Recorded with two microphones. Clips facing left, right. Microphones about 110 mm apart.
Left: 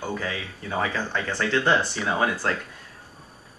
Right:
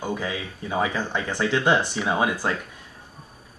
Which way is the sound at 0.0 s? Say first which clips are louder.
Right 2 dB; 15° right (ahead or behind).